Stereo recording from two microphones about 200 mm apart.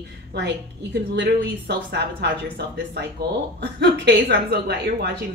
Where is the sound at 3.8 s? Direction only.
60° right (ahead or behind).